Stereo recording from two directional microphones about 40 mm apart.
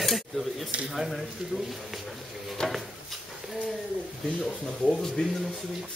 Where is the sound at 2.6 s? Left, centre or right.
Centre.